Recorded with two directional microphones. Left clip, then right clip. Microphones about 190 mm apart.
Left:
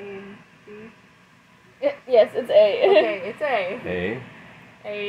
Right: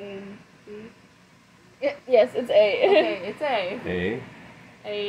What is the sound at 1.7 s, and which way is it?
A child's voice, 15° left (ahead or behind).